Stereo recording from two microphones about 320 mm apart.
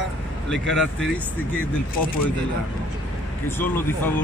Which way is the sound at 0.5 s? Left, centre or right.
Centre.